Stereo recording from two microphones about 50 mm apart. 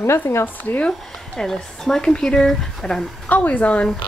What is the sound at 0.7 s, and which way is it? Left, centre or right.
Speech, left.